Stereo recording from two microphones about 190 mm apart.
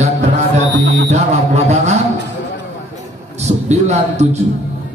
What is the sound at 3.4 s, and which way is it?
Speech, 35° right (ahead or behind).